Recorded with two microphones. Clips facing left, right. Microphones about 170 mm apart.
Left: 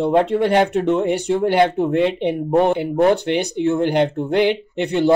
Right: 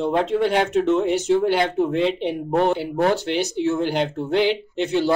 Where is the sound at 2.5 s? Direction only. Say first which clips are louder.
Left 3 dB; 15° left (ahead or behind).